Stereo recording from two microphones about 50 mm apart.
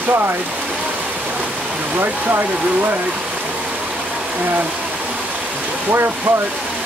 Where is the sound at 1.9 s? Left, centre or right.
Right.